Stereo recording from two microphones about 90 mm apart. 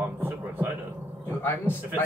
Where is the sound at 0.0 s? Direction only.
20° right (ahead or behind).